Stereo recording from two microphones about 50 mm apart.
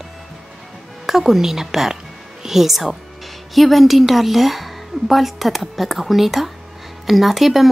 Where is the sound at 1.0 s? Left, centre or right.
Centre.